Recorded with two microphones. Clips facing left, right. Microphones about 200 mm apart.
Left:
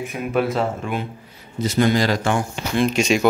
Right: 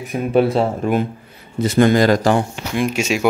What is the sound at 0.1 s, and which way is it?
Speech, 30° right (ahead or behind).